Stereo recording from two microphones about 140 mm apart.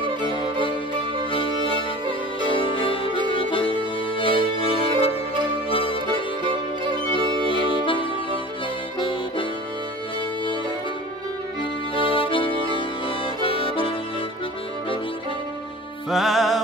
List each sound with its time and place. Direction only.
0.3 s music: 35° left (ahead or behind)
6.4 s music: 35° right (ahead or behind)
7.6 s music: 40° left (ahead or behind)
11.9 s music: 40° left (ahead or behind)
16.1 s music: centre (ahead or behind)